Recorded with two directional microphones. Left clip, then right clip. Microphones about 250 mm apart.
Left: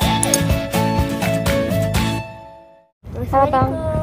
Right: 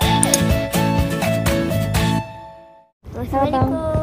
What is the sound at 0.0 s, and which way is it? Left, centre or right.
Music, centre.